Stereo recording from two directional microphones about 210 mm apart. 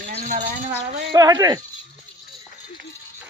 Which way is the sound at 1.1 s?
20° right (ahead or behind).